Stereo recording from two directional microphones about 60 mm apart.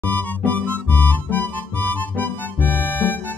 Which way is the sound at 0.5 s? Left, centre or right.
Left.